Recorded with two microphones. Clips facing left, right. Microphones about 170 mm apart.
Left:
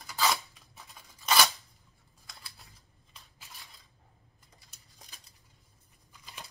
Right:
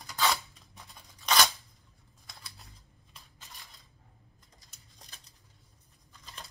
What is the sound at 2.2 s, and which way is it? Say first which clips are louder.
Typing: right 1 dB; centre (ahead or behind).